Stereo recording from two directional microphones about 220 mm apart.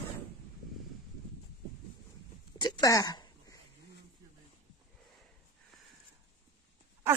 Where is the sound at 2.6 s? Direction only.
20° left (ahead or behind).